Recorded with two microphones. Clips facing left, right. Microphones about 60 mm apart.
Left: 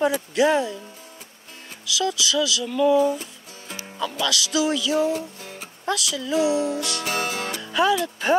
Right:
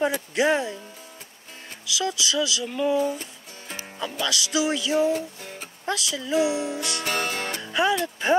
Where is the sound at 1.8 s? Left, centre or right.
Right.